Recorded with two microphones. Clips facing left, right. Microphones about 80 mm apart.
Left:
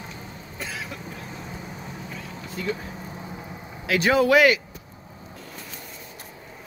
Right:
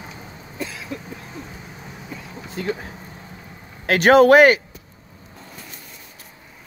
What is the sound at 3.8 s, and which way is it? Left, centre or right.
Speech, right.